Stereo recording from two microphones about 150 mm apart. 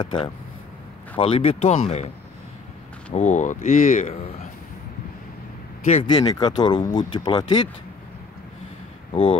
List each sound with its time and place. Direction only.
0.0 s speech: 30° left (ahead or behind)
1.1 s speech: 40° left (ahead or behind)
3.2 s speech: 55° left (ahead or behind)
6.0 s speech: 25° left (ahead or behind)
9.1 s speech: 35° left (ahead or behind)